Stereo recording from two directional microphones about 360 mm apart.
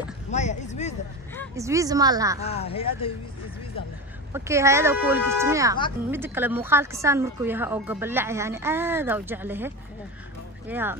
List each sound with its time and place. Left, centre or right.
0.3 s a sound: centre
1.5 s speech: centre
2.4 s speech: centre
4.3 s speech: centre
10.7 s speech: centre